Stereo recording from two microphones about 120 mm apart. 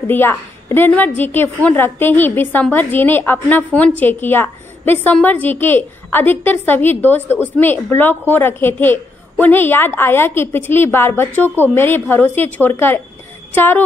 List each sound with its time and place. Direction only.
0.1 s a woman's voice: 15° left (ahead or behind)